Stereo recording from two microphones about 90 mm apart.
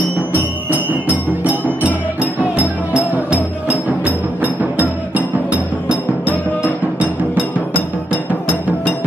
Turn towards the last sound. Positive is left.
turn(degrees=-15)  # may be behind; listen again after turning